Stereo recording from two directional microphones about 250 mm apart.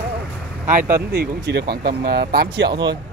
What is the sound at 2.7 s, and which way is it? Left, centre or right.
Speech, centre.